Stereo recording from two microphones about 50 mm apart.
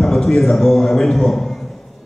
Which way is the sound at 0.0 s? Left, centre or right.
Centre.